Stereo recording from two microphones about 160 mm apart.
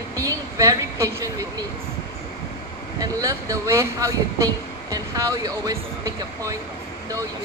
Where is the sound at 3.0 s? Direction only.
20° right (ahead or behind).